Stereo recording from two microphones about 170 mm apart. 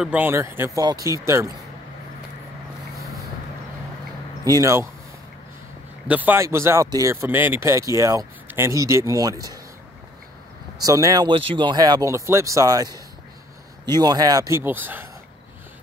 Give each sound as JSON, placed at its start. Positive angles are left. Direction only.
{"t": 0.0, "sound": "speech", "side_deg": -10}
{"t": 4.5, "sound": "speech", "side_deg": -20}
{"t": 6.0, "sound": "speech", "side_deg": -10}
{"t": 10.8, "sound": "speech", "side_deg": -20}